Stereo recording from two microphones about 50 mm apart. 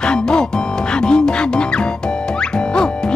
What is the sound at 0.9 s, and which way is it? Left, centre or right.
Music, centre.